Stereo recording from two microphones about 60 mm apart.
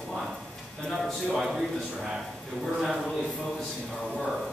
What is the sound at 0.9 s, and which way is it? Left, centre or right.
A man's voice, centre.